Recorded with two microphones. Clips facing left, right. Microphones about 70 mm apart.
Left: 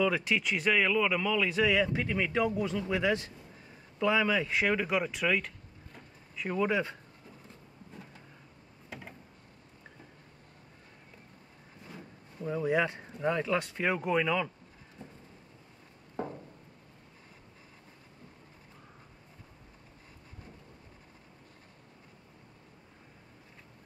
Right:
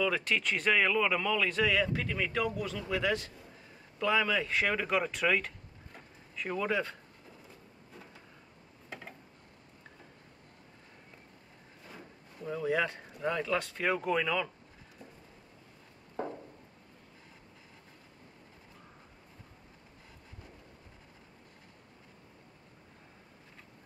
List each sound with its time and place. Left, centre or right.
0.0 s speech: centre
12.4 s speech: centre
15.0 s a sound: left